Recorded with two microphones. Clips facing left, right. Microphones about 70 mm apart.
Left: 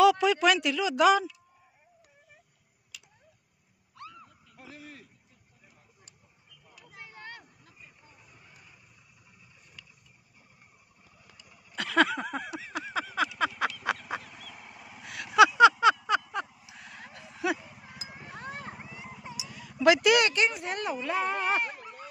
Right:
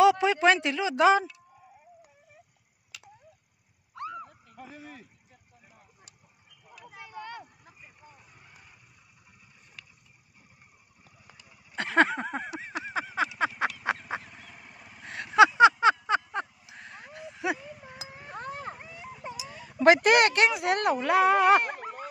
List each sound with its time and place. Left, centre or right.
0.0 s speech: right
3.9 s horse: right
7.6 s vehicle: right
11.2 s a sound: right
14.1 s fowl: right
14.5 s vehicle: centre
15.3 s a sound: right
19.2 s speech: right